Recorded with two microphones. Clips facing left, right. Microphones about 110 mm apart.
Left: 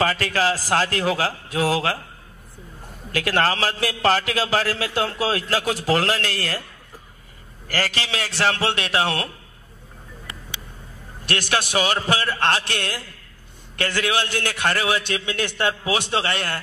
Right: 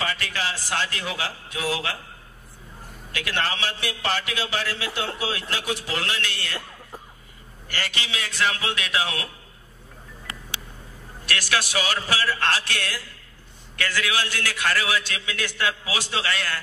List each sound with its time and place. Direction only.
0.0 s a man's voice: 40° left (ahead or behind)
3.1 s a man's voice: 40° left (ahead or behind)
7.6 s a man's voice: 35° left (ahead or behind)
9.0 s speech: 60° left (ahead or behind)
11.2 s a man's voice: 25° left (ahead or behind)
12.5 s music: 55° left (ahead or behind)
14.0 s a man's voice: 25° left (ahead or behind)